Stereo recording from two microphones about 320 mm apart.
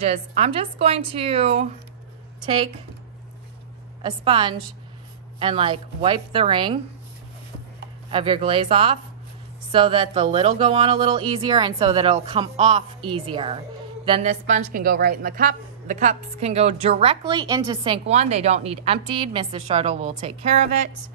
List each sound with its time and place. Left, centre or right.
0.0 s a woman's voice: centre
4.0 s speech: centre
8.1 s a woman's voice: centre